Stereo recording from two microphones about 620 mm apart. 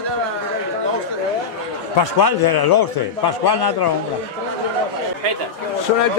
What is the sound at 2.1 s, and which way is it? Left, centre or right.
A man's voice, left.